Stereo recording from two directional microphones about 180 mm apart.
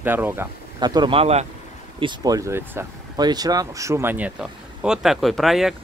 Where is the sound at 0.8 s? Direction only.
25° right (ahead or behind).